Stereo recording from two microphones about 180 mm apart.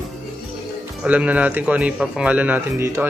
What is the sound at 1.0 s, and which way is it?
A man's voice, 10° right (ahead or behind).